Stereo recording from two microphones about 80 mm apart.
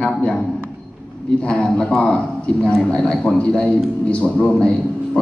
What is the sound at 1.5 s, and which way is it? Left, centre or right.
A man's voice, centre.